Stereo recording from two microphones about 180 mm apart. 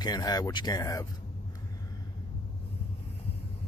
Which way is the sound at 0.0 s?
20° left (ahead or behind).